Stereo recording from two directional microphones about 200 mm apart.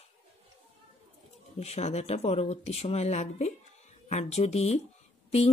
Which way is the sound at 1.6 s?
35° left (ahead or behind).